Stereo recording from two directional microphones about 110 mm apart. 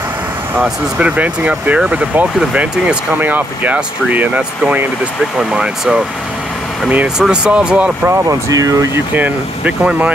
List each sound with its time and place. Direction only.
0.6 s speech: 10° right (ahead or behind)
8.1 s speech: 30° right (ahead or behind)
9.1 s speech: 15° right (ahead or behind)